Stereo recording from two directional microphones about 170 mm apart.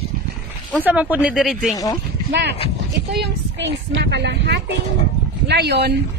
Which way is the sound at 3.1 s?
90° right.